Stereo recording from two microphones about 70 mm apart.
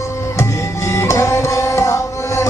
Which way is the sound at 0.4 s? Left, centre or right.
Left.